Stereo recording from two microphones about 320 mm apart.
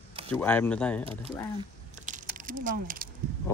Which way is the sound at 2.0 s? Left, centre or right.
Right.